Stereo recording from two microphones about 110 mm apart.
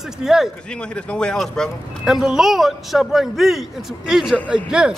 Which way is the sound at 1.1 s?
10° left (ahead or behind).